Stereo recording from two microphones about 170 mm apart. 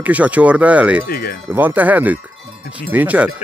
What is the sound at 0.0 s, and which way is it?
Speech, 10° right (ahead or behind).